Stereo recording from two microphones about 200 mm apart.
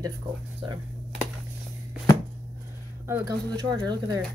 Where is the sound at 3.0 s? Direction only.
15° right (ahead or behind).